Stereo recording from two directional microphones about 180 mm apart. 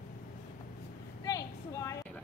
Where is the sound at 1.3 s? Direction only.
20° left (ahead or behind).